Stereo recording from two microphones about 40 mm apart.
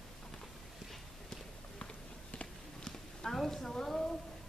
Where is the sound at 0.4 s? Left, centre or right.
Centre.